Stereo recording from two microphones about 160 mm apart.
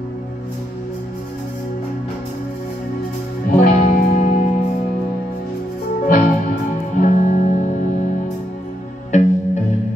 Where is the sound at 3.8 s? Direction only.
50° left (ahead or behind).